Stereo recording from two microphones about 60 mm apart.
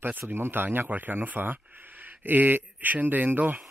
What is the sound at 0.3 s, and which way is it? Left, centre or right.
Speech, right.